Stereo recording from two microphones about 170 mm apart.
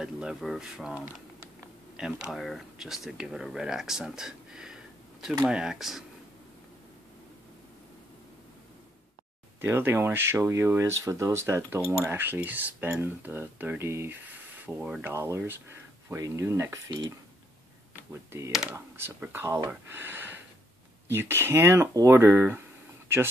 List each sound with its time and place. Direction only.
0.0 s speech: 5° right (ahead or behind)
9.6 s speech: 15° right (ahead or behind)
18.1 s speech: 15° right (ahead or behind)
18.5 s speech: 5° right (ahead or behind)